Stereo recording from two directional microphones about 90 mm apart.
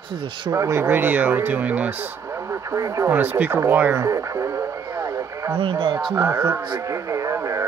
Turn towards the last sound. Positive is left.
turn(degrees=-35)  # may be behind; listen again after turning